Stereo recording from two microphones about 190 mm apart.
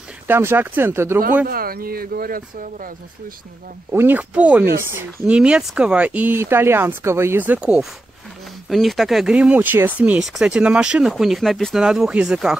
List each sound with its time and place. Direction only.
0.3 s speech: 10° right (ahead or behind)
1.5 s speech: 50° right (ahead or behind)
3.9 s speech: 10° right (ahead or behind)